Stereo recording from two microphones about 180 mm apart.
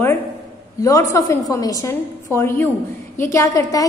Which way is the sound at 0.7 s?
20° left (ahead or behind).